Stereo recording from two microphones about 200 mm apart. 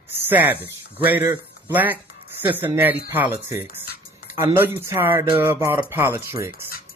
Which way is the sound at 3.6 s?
50° left (ahead or behind).